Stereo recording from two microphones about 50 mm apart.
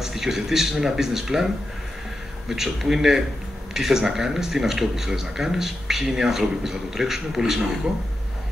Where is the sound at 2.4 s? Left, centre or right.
Centre.